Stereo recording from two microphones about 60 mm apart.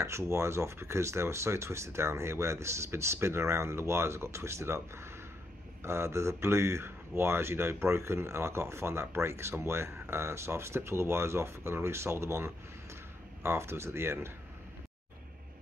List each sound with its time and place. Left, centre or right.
0.0 s speech: right